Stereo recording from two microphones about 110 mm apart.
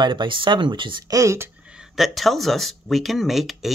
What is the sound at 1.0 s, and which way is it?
Speech, 30° right (ahead or behind).